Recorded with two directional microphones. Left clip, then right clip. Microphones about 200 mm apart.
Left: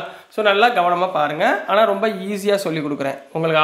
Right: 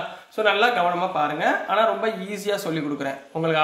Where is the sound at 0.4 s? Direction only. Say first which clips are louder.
Left 4 dB; 30° left (ahead or behind).